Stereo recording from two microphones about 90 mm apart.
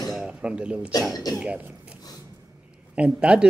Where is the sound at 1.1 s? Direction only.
45° left (ahead or behind).